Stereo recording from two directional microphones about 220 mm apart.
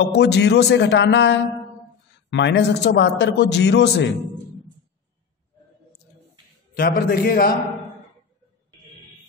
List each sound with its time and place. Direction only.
0.1 s a man's voice: 50° left (ahead or behind)
6.7 s a man's voice: 40° left (ahead or behind)